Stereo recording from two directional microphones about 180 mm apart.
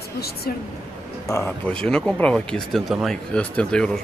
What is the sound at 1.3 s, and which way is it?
A man's voice, 10° left (ahead or behind).